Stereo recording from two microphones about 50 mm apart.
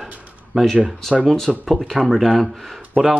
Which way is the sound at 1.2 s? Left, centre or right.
Centre.